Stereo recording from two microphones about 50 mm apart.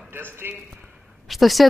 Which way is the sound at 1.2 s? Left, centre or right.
Centre.